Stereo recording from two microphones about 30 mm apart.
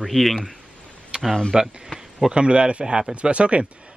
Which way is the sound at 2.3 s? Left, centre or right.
Right.